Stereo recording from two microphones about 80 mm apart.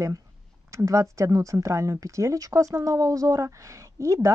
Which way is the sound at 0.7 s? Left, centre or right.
Right.